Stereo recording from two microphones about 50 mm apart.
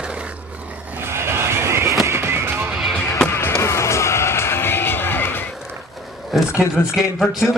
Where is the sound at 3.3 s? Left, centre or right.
Left.